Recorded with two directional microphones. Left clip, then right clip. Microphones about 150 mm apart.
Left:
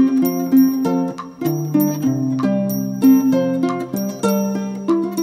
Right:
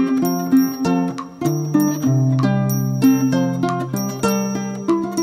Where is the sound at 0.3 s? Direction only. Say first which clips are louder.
Even; 25° right (ahead or behind).